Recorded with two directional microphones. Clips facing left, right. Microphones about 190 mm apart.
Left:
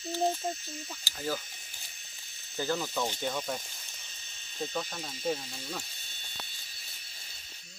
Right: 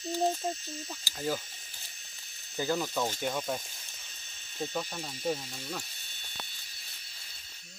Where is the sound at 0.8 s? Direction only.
20° right (ahead or behind).